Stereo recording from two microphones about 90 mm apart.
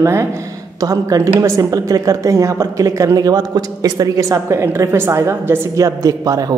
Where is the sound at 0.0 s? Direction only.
30° right (ahead or behind).